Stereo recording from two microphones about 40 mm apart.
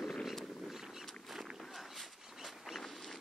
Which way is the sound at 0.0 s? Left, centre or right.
Centre.